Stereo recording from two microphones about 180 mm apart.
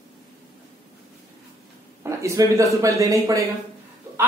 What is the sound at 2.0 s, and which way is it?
Speech, 15° right (ahead or behind).